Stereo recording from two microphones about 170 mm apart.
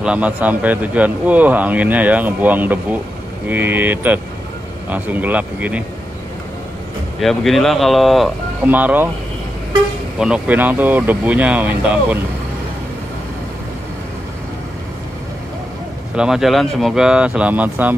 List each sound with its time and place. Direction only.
0.0 s a man's voice: 10° right (ahead or behind)
7.2 s speech: centre (ahead or behind)
8.6 s a man's voice: 10° right (ahead or behind)
10.1 s a man's voice: 5° right (ahead or behind)
16.2 s speech: centre (ahead or behind)